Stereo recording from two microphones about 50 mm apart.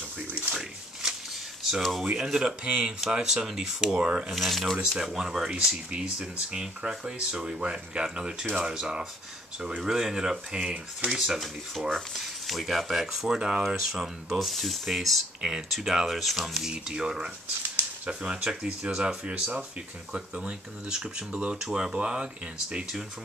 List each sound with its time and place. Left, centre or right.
1.0 s a sound: centre
1.8 s speech: centre
2.2 s speech: centre
4.3 s speech: centre
4.9 s speech: centre
11.1 s speech: centre
16.5 s speech: centre